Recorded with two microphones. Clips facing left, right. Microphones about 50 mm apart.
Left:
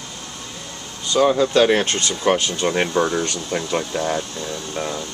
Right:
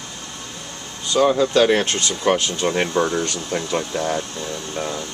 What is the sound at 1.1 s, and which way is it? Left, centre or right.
Speech, centre.